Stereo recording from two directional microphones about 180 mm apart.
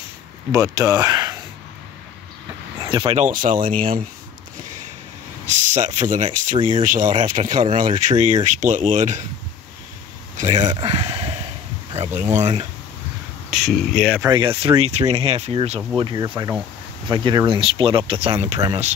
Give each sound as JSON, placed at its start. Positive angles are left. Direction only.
{"t": 0.5, "sound": "speech", "side_deg": -20}
{"t": 2.9, "sound": "speech", "side_deg": -25}
{"t": 3.3, "sound": "speech", "side_deg": -50}
{"t": 5.5, "sound": "speech", "side_deg": -40}
{"t": 10.3, "sound": "speech", "side_deg": -40}
{"t": 10.7, "sound": "a sound", "side_deg": -30}
{"t": 11.9, "sound": "speech", "side_deg": -30}
{"t": 13.5, "sound": "speech", "side_deg": 0}
{"t": 14.3, "sound": "speech", "side_deg": -30}
{"t": 16.0, "sound": "speech", "side_deg": -25}